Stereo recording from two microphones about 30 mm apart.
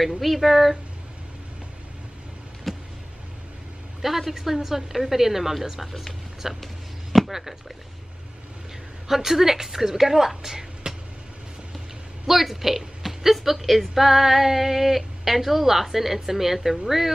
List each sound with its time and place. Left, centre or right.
0.2 s speech: centre
2.7 s vehicle: centre
4.0 s a woman's voice: centre
6.6 s a sound: centre
7.3 s a woman's voice: centre
9.0 s a woman's voice: centre
10.8 s vehicle: right
12.3 s a woman's voice: centre